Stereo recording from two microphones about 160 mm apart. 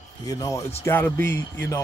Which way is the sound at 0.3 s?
20° left (ahead or behind).